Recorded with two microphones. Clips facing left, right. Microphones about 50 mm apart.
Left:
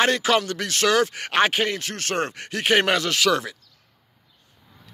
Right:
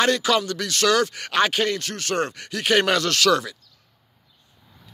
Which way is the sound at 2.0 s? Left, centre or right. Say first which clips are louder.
Right 1 dB; left.